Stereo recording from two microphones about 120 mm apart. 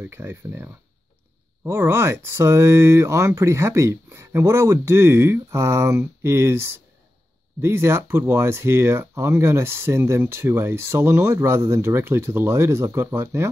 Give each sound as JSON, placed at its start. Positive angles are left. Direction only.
{"t": 0.0, "sound": "speech", "side_deg": -20}